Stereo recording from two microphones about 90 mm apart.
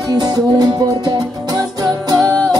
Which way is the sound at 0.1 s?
45° right (ahead or behind).